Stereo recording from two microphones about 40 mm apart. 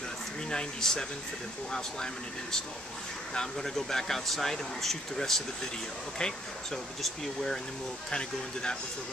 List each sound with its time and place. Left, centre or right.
0.5 s speech: centre
3.3 s speech: centre
8.1 s speech: left